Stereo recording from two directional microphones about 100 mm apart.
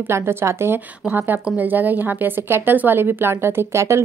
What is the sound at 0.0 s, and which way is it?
A woman's voice, 25° right (ahead or behind).